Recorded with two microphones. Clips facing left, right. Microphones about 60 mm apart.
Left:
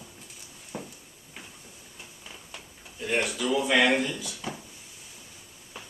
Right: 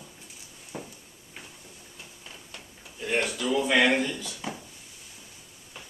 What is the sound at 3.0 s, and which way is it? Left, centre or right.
A man's voice, centre.